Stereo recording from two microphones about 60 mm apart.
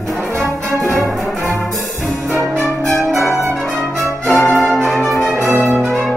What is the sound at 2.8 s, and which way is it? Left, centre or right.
Music, centre.